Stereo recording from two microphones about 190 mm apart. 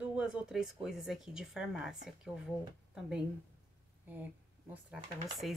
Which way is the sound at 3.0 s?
5° right (ahead or behind).